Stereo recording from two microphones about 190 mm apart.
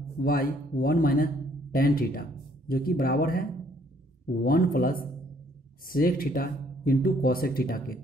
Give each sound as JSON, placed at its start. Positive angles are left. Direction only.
{"t": 0.2, "sound": "speech", "side_deg": 50}